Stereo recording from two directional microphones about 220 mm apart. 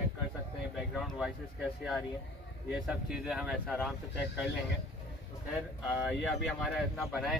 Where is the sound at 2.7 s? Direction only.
5° right (ahead or behind).